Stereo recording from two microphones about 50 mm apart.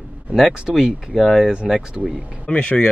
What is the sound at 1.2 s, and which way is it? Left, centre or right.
Speech, centre.